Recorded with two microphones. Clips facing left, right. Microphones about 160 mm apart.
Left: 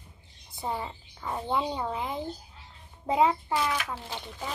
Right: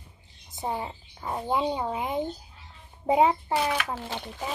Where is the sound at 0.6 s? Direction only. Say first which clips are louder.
Right 2 dB; 20° right (ahead or behind).